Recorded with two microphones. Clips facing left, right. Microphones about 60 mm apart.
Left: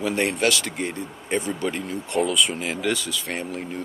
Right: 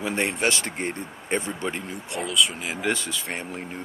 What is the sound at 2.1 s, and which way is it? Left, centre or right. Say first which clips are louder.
Speech: left 3 dB; centre.